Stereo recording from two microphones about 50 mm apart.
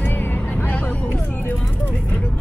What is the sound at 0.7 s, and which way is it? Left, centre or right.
Speech, left.